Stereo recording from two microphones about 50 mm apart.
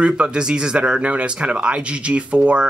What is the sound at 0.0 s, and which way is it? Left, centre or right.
Speech, right.